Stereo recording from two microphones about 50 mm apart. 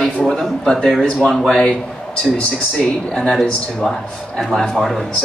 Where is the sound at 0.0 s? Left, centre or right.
Centre.